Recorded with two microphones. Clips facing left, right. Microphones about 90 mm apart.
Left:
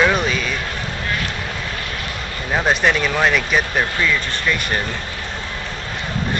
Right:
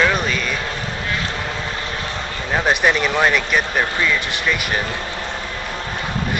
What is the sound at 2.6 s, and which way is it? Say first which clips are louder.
Speech: even; centre (ahead or behind).